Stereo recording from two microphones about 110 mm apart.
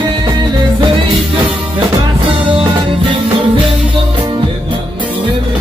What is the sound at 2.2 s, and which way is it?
Music, 50° right (ahead or behind).